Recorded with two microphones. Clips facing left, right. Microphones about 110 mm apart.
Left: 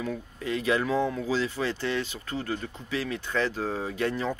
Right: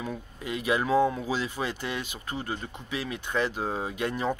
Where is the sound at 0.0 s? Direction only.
15° right (ahead or behind).